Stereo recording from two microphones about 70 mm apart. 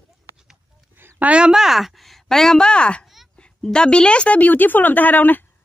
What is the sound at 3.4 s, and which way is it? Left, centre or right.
A woman's voice, centre.